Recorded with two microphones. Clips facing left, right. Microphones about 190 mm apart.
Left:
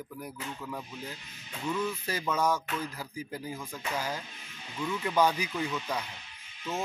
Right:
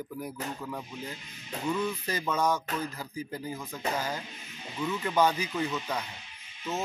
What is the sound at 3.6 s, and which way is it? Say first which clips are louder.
Speech: right 1 dB; 5° right (ahead or behind).